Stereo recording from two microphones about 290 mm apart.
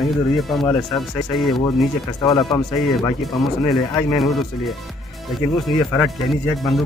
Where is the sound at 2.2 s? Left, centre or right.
Centre.